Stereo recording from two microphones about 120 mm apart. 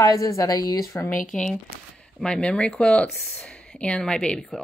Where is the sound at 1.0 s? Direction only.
5° left (ahead or behind).